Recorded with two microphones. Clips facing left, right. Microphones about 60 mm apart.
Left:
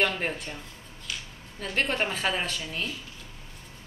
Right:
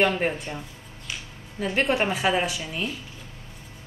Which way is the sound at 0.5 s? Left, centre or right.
Centre.